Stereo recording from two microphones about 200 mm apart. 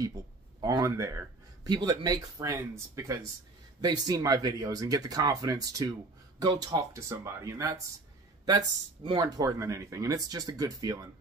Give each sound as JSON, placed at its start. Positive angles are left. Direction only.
{"t": 0.0, "sound": "speech", "side_deg": -20}